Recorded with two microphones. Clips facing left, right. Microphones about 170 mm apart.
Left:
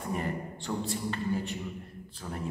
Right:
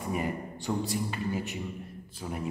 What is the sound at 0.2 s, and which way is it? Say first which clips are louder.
A man's voice: right 1 dB; 15° right (ahead or behind).